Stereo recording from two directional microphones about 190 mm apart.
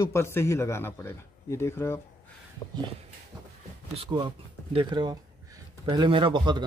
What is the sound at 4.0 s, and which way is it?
Speech, 25° right (ahead or behind).